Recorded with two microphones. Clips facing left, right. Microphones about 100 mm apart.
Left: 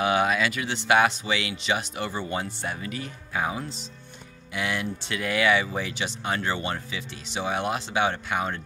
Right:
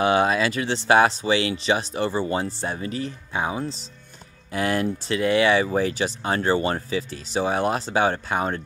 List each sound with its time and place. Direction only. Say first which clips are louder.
0.0 s speech: right 3 dB; 30° right (ahead or behind)
4.5 s speech: right 6 dB; 40° right (ahead or behind)